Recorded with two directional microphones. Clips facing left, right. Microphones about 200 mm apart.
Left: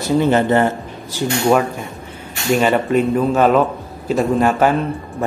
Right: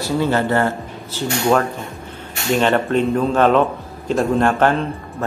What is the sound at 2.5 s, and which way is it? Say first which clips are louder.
A man's voice: left 2 dB; 5° left (ahead or behind).